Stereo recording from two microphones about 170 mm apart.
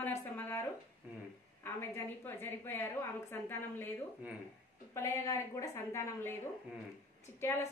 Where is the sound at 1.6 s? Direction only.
15° left (ahead or behind).